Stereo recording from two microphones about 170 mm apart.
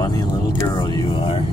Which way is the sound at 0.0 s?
20° left (ahead or behind).